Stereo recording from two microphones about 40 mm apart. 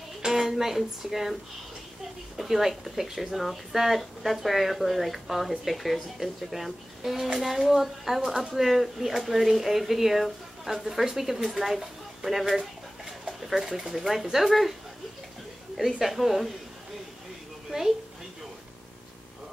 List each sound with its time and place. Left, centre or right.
0.2 s speech: centre
2.3 s a woman's voice: centre
15.8 s speech: centre
17.6 s a woman's voice: centre